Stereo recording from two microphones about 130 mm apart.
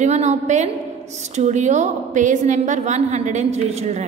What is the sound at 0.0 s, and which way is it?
A woman's voice, 60° right (ahead or behind).